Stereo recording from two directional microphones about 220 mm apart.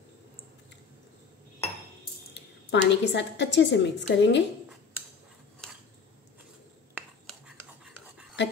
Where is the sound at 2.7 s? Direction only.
55° left (ahead or behind).